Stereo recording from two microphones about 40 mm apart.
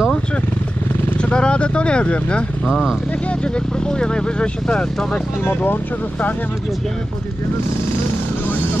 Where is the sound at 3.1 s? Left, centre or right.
Left.